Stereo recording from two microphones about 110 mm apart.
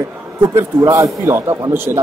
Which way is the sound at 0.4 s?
30° right (ahead or behind).